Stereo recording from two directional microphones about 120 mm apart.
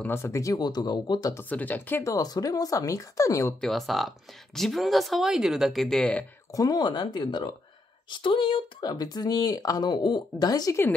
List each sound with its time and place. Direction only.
0.0 s speech: 20° left (ahead or behind); by 1.3 s 35° left (ahead or behind)
1.3 s speech: 15° left (ahead or behind)
2.1 s speech: 30° left (ahead or behind)
3.6 s speech: centre (ahead or behind)
6.5 s speech: 30° left (ahead or behind)